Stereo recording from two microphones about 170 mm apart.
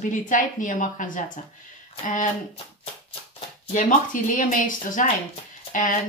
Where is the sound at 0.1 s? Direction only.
50° left (ahead or behind).